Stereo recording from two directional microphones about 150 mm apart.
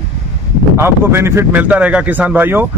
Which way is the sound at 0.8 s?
15° right (ahead or behind).